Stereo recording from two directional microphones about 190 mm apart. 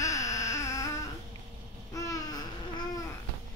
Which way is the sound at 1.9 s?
15° left (ahead or behind).